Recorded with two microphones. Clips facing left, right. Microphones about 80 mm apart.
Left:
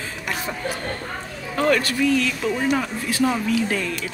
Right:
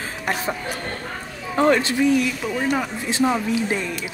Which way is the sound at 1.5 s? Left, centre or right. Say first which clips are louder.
Right 2 dB; right.